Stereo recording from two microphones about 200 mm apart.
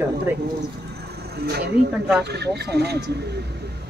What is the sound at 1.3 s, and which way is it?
Speech, 55° right (ahead or behind).